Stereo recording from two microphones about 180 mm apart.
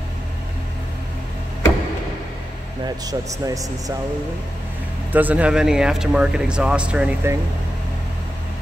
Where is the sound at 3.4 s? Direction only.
20° right (ahead or behind).